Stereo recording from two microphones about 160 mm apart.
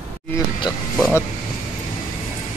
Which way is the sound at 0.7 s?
25° left (ahead or behind).